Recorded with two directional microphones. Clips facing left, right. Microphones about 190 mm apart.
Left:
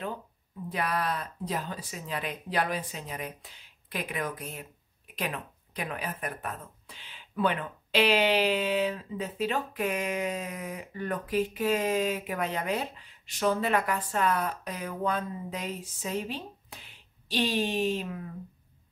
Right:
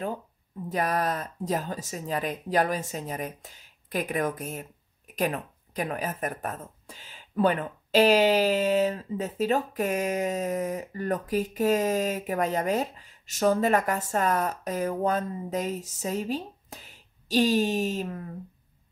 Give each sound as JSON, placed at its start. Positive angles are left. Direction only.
{"t": 0.7, "sound": "speech", "side_deg": -45}